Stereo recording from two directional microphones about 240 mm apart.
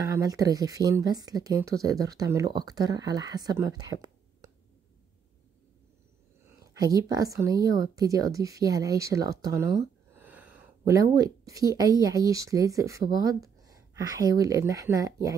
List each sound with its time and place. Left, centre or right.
0.0 s speech: centre
6.6 s speech: centre